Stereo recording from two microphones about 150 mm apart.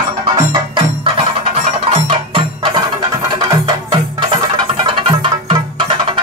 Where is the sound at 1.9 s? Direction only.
40° right (ahead or behind).